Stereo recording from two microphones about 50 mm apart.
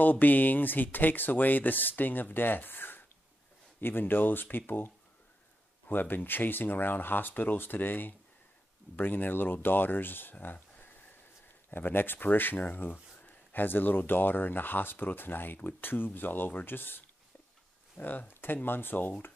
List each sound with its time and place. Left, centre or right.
0.0 s speech: left
11.7 s speech: left